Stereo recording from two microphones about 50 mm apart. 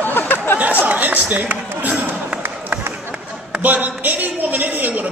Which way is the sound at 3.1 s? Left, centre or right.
Right.